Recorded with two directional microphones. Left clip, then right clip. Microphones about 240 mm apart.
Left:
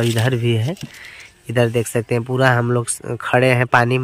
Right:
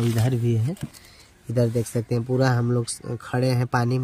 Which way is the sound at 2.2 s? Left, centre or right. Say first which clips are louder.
Left 7 dB; left.